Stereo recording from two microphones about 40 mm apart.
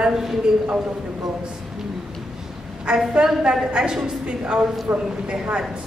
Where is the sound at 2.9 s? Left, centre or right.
Right.